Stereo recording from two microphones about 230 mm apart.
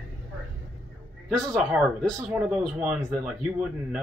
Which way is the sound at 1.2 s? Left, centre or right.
Centre.